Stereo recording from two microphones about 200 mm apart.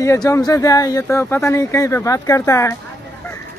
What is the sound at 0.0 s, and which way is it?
Speech, 15° left (ahead or behind).